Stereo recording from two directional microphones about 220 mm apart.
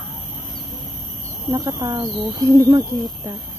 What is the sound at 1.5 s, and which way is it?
Speech, 15° right (ahead or behind).